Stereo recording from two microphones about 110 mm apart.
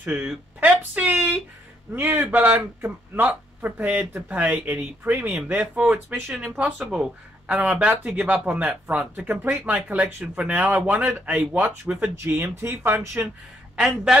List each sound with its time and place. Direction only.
0.0 s a sound: 10° right (ahead or behind)
2.0 s a man's voice: 20° right (ahead or behind)
13.7 s speech: 5° right (ahead or behind)